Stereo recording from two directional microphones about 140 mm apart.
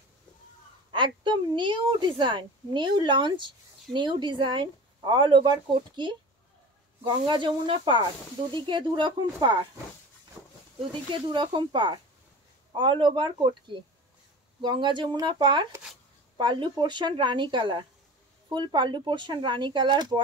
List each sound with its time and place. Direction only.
0.9 s a woman's voice: 35° right (ahead or behind)
7.2 s a woman's voice: 35° right (ahead or behind)
10.4 s a sound: centre (ahead or behind)
11.2 s a woman's voice: 35° right (ahead or behind)